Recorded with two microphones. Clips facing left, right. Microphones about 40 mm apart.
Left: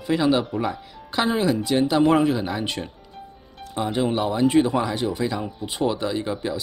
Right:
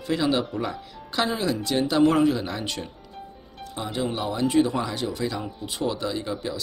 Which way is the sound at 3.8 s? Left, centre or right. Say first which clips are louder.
Left 5 dB; left.